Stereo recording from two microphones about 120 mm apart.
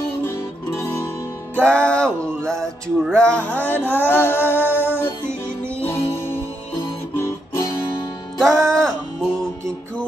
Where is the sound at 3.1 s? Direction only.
10° left (ahead or behind).